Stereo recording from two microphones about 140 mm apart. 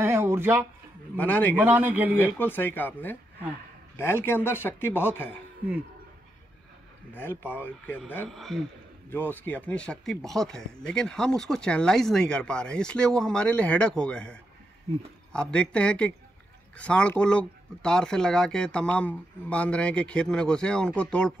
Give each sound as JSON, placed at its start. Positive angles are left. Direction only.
{"t": 0.0, "sound": "a sound", "side_deg": -20}
{"t": 1.1, "sound": "speech", "side_deg": 10}
{"t": 1.5, "sound": "a man's voice", "side_deg": -15}
{"t": 2.3, "sound": "speech", "side_deg": 15}
{"t": 7.5, "sound": "speech", "side_deg": 15}
{"t": 8.3, "sound": "a man's voice", "side_deg": 0}
{"t": 9.1, "sound": "speech", "side_deg": 15}